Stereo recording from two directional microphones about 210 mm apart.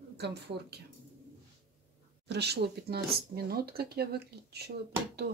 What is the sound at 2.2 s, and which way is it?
Speech, 55° right (ahead or behind).